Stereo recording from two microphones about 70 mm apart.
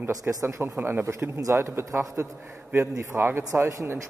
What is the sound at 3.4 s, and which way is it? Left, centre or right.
Speech, right.